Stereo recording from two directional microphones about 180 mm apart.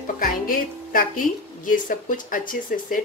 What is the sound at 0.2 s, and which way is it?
A woman's voice, 50° left (ahead or behind).